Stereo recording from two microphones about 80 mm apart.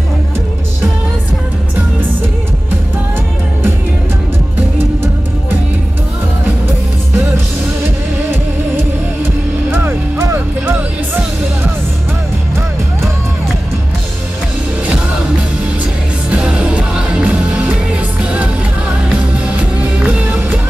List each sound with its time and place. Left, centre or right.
9.7 s music: right
16.3 s music: centre
19.3 s music: centre